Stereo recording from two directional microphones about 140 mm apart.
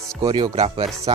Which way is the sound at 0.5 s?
45° right (ahead or behind).